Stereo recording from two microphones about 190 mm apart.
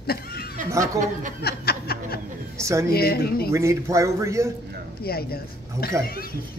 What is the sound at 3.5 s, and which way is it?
Speech, 15° right (ahead or behind).